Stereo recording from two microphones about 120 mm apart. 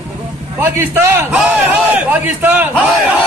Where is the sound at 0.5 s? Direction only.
20° right (ahead or behind).